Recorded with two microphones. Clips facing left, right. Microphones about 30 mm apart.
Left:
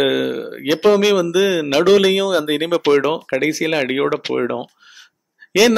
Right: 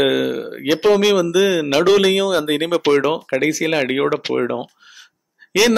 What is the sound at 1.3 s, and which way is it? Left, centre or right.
Speech, centre.